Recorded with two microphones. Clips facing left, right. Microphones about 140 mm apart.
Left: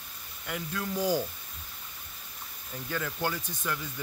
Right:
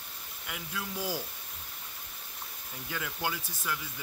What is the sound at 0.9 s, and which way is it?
Speech, 45° left (ahead or behind).